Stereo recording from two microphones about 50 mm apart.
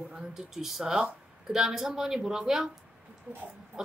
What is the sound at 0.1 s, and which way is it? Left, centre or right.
Speech, centre.